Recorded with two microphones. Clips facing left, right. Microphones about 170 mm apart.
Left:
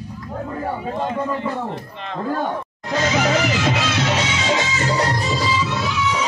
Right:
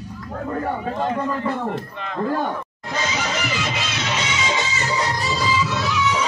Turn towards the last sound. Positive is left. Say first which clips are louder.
# left 3 dB
turn(degrees=55)  # may be behind; listen again after turning